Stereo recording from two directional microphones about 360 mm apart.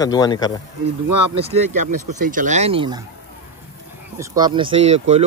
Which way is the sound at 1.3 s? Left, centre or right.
Centre.